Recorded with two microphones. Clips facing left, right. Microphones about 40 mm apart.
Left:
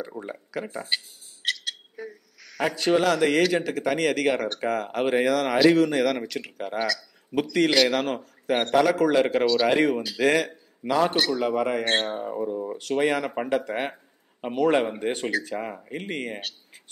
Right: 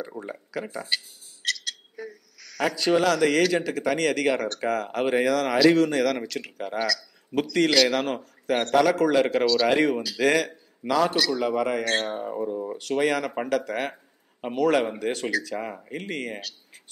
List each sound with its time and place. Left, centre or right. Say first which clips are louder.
0.2 s speech: even; centre
0.8 s a man's voice: even; left
11.0 s speech: even; left
11.8 s speech: left 1 dB; left
12.2 s speech: even; centre
14.4 s a man's voice: even; centre
15.0 s speech: even; centre
15.5 s speech: even; centre